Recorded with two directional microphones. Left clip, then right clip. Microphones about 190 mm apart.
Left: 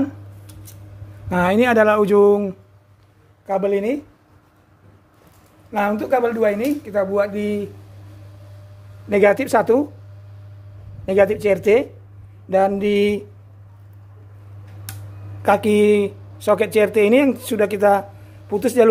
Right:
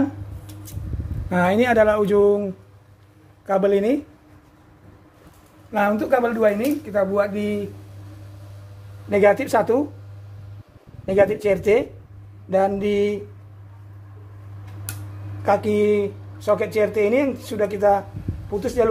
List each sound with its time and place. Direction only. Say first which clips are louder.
1.3 s speech: left 2 dB; 20° left (ahead or behind)
3.4 s speech: right 1 dB; 5° left (ahead or behind)
5.7 s speech: even; 35° left (ahead or behind)
9.1 s speech: left 2 dB; 40° left (ahead or behind)
11.1 s speech: left 2 dB; 40° left (ahead or behind)
15.4 s speech: left 3 dB; 40° left (ahead or behind)